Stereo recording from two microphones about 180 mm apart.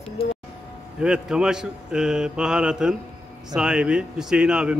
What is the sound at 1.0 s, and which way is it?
Speech, 5° right (ahead or behind).